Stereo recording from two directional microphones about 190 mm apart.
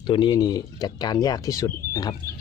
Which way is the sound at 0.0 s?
25° left (ahead or behind).